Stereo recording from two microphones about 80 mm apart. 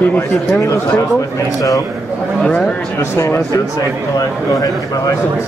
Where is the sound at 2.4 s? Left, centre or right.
Centre.